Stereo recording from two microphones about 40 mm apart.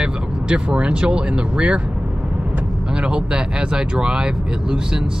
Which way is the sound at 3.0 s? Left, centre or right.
Right.